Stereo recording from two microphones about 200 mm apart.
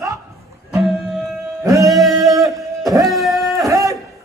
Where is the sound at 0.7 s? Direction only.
Centre (ahead or behind).